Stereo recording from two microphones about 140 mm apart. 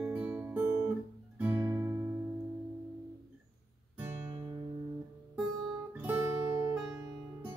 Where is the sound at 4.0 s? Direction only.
15° right (ahead or behind).